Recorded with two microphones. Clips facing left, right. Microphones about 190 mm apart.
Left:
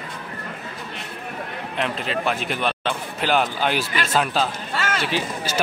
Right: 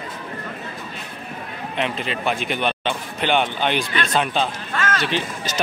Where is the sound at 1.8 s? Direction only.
Centre (ahead or behind).